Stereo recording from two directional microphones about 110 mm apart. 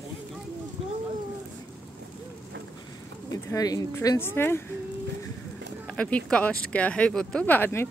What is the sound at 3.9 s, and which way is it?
Speech, 20° left (ahead or behind).